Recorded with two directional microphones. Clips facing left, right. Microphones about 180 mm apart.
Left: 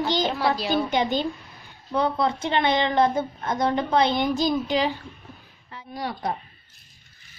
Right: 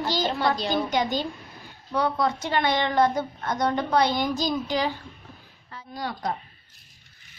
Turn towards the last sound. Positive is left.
turn(degrees=20)  # may be behind; listen again after turning